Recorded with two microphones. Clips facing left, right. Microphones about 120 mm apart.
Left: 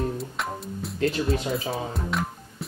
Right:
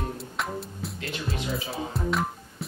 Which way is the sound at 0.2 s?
Centre (ahead or behind).